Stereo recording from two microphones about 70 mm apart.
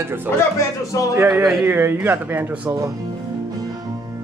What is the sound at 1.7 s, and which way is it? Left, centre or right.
Speech, right.